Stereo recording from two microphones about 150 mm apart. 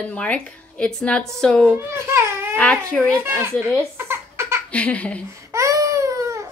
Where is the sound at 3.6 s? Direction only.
15° right (ahead or behind).